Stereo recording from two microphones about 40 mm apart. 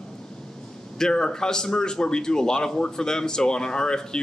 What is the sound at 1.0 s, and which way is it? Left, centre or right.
A man's voice, centre.